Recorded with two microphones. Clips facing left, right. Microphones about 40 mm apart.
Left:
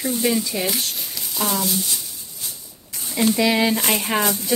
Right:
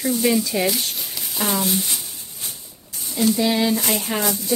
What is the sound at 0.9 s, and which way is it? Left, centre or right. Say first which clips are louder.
Speech: even; centre.